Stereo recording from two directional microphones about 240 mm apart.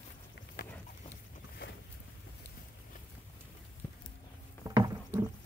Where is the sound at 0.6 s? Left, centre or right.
Left.